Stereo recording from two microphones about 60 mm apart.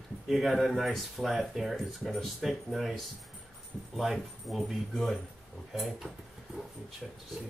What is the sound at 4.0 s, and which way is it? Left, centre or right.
Speech, centre.